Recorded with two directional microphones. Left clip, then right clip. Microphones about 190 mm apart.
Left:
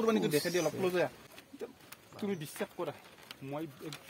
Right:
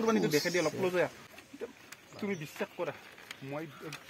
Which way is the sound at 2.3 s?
35° left (ahead or behind).